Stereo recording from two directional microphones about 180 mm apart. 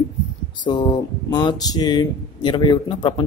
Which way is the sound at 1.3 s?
25° left (ahead or behind).